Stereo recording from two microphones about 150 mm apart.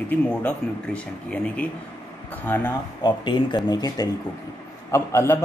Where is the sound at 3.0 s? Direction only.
30° left (ahead or behind).